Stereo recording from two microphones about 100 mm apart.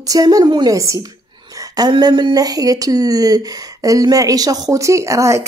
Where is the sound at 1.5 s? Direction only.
40° right (ahead or behind).